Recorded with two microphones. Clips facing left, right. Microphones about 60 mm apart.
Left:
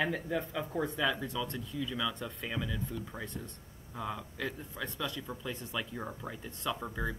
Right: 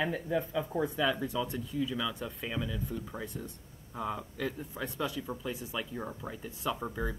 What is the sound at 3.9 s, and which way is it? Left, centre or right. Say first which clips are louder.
Speech: right 3 dB; right.